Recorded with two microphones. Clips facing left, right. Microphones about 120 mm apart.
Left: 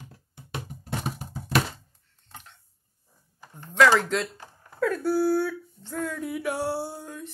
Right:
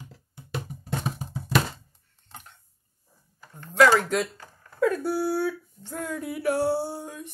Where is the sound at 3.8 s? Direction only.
10° right (ahead or behind).